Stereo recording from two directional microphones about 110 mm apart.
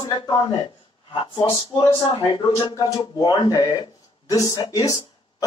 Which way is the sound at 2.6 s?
35° left (ahead or behind).